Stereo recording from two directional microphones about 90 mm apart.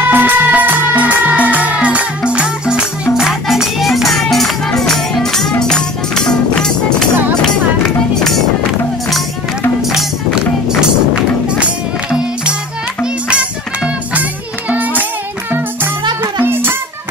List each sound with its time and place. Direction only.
0.0 s music: 20° right (ahead or behind); by 7.1 s 5° left (ahead or behind)
9.9 s music: 5° right (ahead or behind)
14.7 s music: 20° right (ahead or behind)
16.4 s music: 25° right (ahead or behind)